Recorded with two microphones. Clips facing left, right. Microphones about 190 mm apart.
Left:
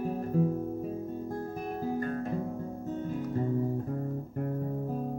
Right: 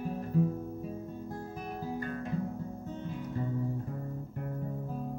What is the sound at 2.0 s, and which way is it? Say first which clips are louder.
Music: left 4 dB; 40° left (ahead or behind).